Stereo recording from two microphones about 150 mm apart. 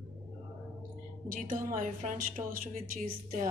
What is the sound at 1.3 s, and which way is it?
A woman's voice, 65° right (ahead or behind).